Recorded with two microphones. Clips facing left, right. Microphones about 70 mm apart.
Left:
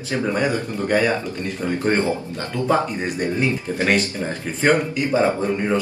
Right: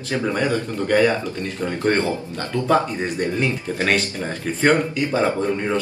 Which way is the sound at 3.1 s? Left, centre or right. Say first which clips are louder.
Left 1 dB; centre.